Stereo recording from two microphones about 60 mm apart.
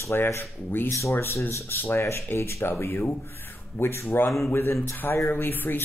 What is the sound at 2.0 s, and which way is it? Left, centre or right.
Speech, left.